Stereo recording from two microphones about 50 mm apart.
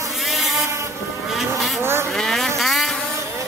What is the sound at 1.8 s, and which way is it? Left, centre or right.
Vehicle, right.